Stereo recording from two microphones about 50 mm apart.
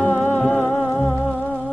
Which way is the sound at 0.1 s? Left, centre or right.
Left.